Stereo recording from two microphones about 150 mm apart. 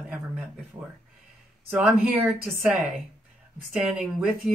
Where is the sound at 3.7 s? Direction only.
5° right (ahead or behind).